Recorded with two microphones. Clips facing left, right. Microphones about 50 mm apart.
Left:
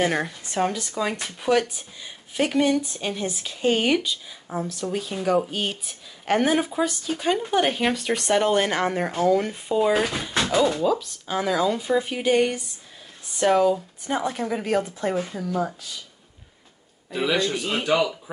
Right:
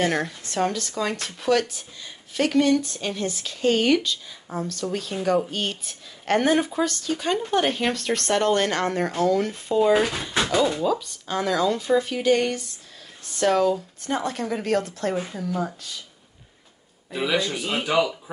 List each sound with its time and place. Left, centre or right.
0.0 s speech: centre
15.1 s speech: centre
17.1 s speech: centre